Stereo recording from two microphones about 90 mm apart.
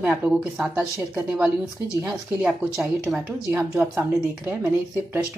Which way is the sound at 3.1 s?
30° right (ahead or behind).